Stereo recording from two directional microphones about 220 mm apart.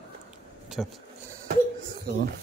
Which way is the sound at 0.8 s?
Centre (ahead or behind).